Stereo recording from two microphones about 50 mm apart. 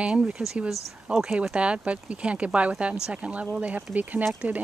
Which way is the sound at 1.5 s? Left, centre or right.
Right.